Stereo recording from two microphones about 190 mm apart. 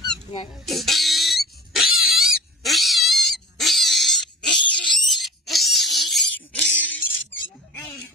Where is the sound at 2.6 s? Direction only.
Centre (ahead or behind).